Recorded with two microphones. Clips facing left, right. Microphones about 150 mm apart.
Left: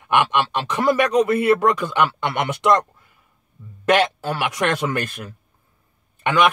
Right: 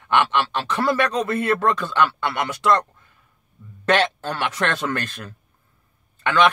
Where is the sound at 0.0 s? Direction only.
15° left (ahead or behind).